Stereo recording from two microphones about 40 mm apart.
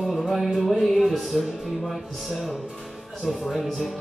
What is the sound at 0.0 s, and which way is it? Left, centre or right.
Music, centre.